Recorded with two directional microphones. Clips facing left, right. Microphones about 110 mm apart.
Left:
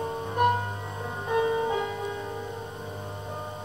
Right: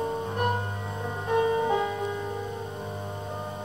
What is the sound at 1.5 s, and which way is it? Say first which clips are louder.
Music: right 2 dB; centre (ahead or behind).